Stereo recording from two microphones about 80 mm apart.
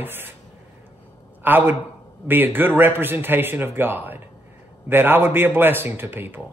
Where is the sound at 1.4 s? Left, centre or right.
Right.